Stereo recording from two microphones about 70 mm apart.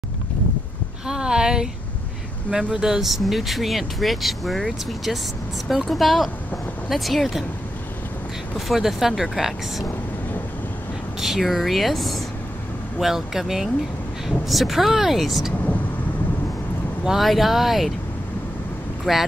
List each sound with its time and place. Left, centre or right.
1.0 s a woman's voice: centre
8.5 s speech: centre
11.1 s speech: centre
17.0 s speech: centre
19.1 s speech: centre